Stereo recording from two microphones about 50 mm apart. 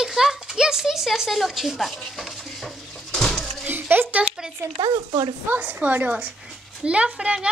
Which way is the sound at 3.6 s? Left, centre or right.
Right.